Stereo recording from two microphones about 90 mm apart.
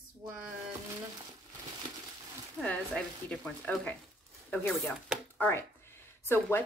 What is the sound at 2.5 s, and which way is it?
Speech, 10° left (ahead or behind).